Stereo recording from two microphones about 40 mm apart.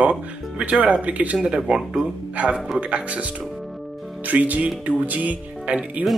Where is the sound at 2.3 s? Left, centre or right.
Right.